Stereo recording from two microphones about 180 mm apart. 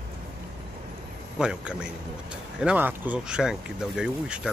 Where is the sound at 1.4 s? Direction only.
5° right (ahead or behind).